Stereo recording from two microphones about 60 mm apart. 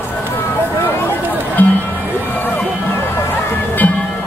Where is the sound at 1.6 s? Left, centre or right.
Left.